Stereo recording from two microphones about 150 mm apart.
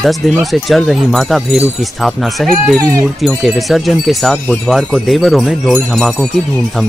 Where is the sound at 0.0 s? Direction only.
Centre (ahead or behind).